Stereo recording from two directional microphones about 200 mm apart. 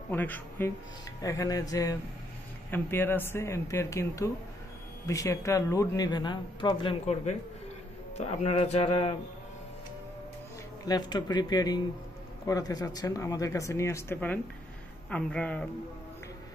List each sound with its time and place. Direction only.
0.1 s a man's voice: 10° left (ahead or behind); by 9.1 s 30° left (ahead or behind)
10.9 s a man's voice: 20° left (ahead or behind); by 15.7 s 5° left (ahead or behind)